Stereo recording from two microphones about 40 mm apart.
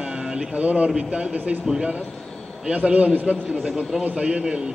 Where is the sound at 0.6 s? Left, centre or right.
Right.